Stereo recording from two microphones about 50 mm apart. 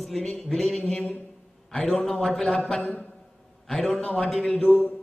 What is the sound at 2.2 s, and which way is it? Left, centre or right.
Speech, centre.